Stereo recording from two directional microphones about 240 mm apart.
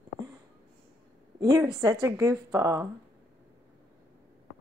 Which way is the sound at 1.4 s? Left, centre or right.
Centre.